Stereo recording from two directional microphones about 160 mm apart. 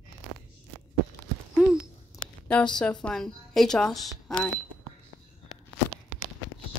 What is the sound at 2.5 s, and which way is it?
A woman's voice, 5° left (ahead or behind).